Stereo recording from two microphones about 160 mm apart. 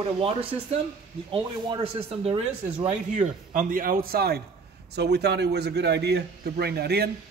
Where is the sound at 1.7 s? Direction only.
30° right (ahead or behind).